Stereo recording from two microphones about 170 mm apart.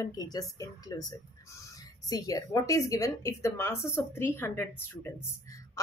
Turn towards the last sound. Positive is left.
turn(degrees=15)  # may be behind; listen again after turning